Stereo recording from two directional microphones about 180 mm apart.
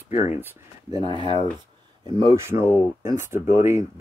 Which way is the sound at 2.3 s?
15° right (ahead or behind).